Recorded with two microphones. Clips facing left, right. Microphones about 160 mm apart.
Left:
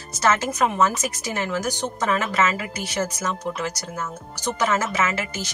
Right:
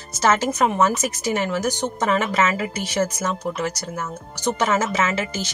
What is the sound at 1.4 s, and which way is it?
Speech, 20° right (ahead or behind).